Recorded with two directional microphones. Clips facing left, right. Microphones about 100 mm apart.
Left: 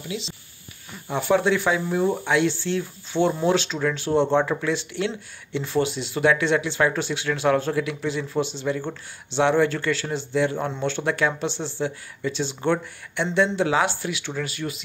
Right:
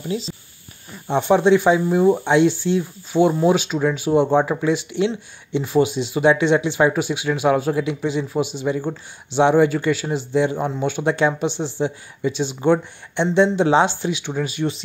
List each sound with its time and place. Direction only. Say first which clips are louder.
0.1 s speech: right 5 dB; 40° right (ahead or behind)
1.0 s speech: right 5 dB; 25° right (ahead or behind)